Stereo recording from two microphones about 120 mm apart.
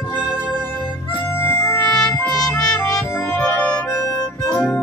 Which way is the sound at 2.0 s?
5° left (ahead or behind).